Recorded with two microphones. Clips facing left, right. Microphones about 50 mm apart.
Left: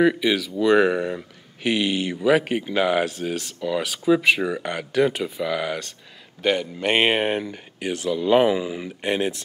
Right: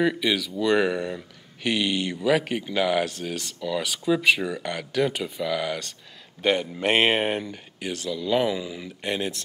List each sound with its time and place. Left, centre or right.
0.0 s speech: centre
6.4 s speech: centre
7.4 s speech: centre